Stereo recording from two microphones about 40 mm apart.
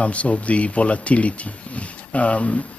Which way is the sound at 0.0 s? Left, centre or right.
Left.